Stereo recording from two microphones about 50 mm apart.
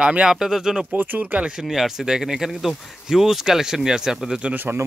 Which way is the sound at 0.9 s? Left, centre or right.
Right.